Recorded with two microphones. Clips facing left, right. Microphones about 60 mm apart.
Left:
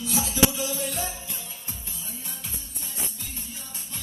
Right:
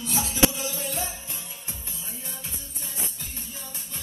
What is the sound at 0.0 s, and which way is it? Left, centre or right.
Music, right.